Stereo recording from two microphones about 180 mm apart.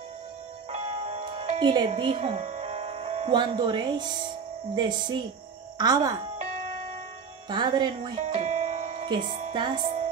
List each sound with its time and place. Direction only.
0.7 s music: 35° right (ahead or behind)
2.0 s speech: 30° right (ahead or behind)
7.4 s speech: 25° right (ahead or behind)